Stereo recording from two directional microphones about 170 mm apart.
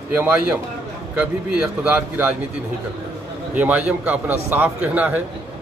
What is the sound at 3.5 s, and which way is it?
Speech, 10° right (ahead or behind).